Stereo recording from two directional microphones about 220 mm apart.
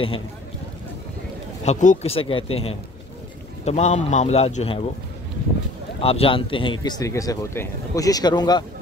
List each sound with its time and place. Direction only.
1.6 s speech: 30° left (ahead or behind)
5.9 s speech: 25° left (ahead or behind)